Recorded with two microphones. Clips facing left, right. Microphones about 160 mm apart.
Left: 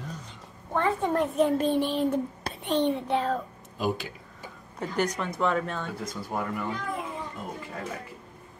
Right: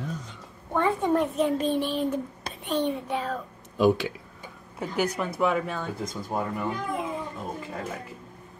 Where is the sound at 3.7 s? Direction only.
70° right (ahead or behind).